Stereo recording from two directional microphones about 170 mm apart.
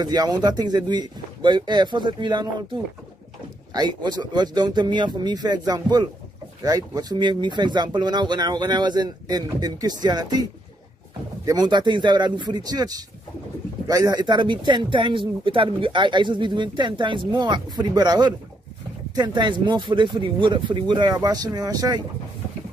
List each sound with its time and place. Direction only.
0.0 s speech: 25° right (ahead or behind)
3.7 s speech: 25° right (ahead or behind)